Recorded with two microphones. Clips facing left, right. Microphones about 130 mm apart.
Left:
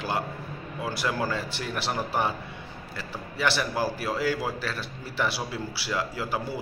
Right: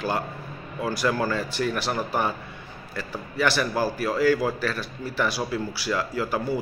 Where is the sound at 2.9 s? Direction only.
20° left (ahead or behind).